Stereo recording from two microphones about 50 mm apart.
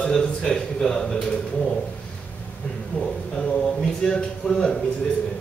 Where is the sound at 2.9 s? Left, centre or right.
Left.